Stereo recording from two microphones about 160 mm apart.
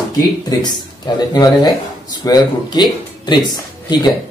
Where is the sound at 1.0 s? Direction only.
25° left (ahead or behind).